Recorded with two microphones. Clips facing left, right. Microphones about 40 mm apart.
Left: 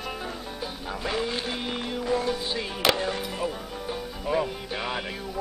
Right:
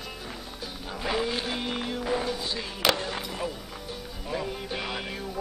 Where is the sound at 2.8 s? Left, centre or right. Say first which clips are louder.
Left 2 dB; centre.